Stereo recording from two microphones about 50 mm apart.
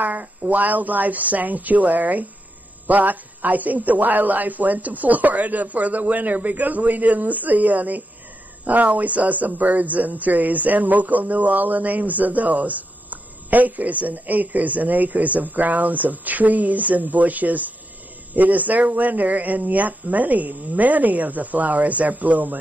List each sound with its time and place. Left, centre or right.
0.0 s speech: right